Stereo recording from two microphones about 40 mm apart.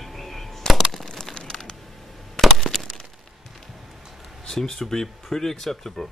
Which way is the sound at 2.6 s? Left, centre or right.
Centre.